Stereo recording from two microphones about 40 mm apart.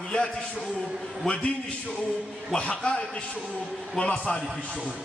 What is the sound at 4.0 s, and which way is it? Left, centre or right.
Speech, centre.